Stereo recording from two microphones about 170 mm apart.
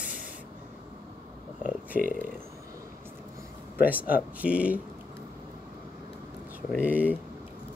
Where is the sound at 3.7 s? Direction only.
10° right (ahead or behind).